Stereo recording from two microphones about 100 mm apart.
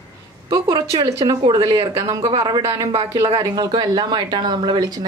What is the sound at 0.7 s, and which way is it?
Speech, 40° right (ahead or behind).